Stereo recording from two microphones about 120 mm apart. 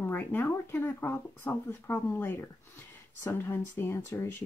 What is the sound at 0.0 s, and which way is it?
Speech, 15° left (ahead or behind).